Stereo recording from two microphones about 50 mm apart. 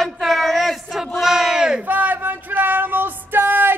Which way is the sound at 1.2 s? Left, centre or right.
Centre.